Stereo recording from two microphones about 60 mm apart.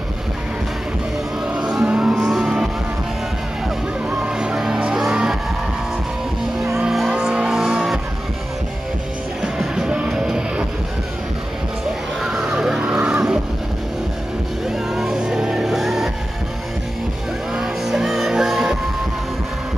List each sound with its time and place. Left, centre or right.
1.4 s music: centre
2.1 s vehicle: centre
4.2 s music: centre
6.9 s music: centre
9.4 s music: centre
12.2 s a sound: centre
15.0 s music: centre
17.6 s music: centre